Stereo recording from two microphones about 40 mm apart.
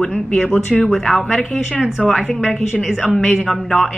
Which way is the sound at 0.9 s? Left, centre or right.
Centre.